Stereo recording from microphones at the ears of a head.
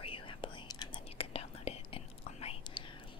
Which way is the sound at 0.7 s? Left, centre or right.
Left.